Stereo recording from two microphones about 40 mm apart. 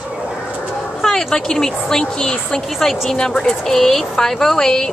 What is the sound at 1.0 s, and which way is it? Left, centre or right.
Speech, centre.